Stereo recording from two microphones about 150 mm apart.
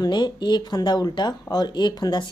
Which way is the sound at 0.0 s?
30° left (ahead or behind).